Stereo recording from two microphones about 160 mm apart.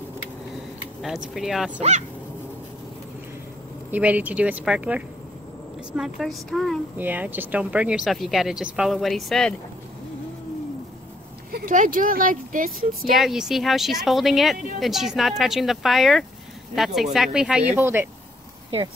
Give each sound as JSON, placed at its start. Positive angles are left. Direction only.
{"t": 1.0, "sound": "speech", "side_deg": 0}
{"t": 1.8, "sound": "speech", "side_deg": -45}
{"t": 3.9, "sound": "speech", "side_deg": -10}
{"t": 7.0, "sound": "speech", "side_deg": -10}
{"t": 11.5, "sound": "speech", "side_deg": -55}
{"t": 13.1, "sound": "speech", "side_deg": 0}